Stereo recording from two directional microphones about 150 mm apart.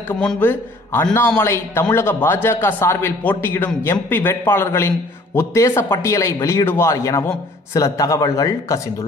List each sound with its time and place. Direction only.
0.2 s a man's voice: 10° left (ahead or behind)